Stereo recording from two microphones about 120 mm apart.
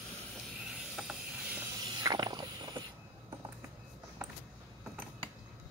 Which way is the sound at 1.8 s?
35° right (ahead or behind).